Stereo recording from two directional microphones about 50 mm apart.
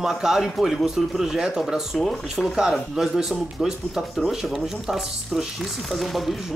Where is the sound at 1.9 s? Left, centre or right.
Centre.